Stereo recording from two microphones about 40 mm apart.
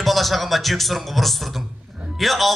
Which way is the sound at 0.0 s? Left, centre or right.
Centre.